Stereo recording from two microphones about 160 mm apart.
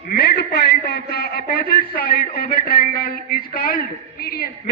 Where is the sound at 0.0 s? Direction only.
85° left.